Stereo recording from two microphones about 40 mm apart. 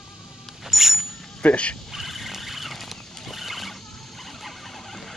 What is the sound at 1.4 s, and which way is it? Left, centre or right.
Speech, left.